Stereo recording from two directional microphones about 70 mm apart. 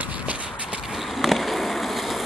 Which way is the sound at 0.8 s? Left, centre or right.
Centre.